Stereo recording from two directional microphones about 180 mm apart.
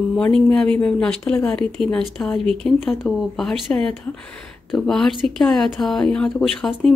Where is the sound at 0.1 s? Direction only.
5° left (ahead or behind).